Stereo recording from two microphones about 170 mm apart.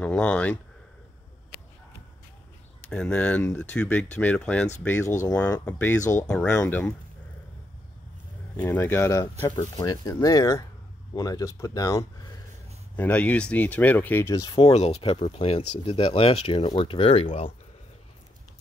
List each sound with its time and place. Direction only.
0.0 s speech: 5° left (ahead or behind)
2.9 s speech: 5° left (ahead or behind)
8.5 s speech: 15° left (ahead or behind)
12.9 s speech: 10° left (ahead or behind)
14.6 s speech: 40° left (ahead or behind)